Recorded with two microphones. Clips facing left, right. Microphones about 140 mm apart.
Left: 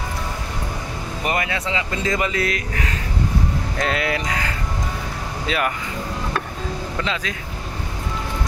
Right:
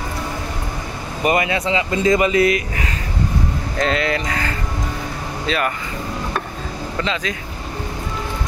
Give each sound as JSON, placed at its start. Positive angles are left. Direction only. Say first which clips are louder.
{"t": 1.2, "sound": "speech", "louder": "right 6 dB", "side_deg": -20}
{"t": 3.7, "sound": "speech", "louder": "right 4 dB", "side_deg": 5}
{"t": 5.5, "sound": "speech", "louder": "right 2 dB", "side_deg": 10}
{"t": 7.0, "sound": "speech", "louder": "right 4 dB", "side_deg": 5}